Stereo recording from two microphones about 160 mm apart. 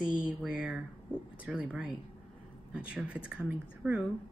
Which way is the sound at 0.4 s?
5° right (ahead or behind).